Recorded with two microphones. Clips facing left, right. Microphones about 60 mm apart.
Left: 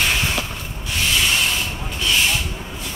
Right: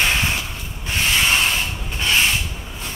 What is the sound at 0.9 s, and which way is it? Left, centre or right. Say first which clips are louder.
Sanding: right 2 dB; right.